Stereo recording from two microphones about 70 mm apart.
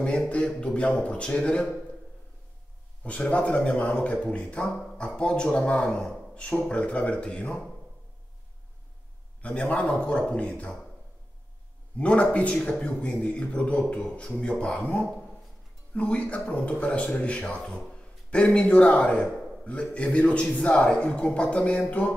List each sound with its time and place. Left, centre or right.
0.0 s speech: centre
3.0 s a man's voice: centre
9.4 s speech: centre
12.0 s a man's voice: centre
19.2 s a sound: centre
19.6 s speech: centre